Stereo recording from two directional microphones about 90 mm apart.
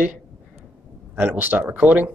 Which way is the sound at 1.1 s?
20° right (ahead or behind).